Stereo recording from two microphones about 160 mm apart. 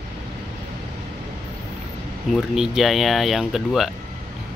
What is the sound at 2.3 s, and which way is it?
Speech, centre (ahead or behind).